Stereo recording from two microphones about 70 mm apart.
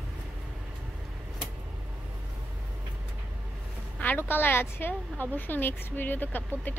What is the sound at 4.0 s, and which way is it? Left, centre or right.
A woman's voice, left.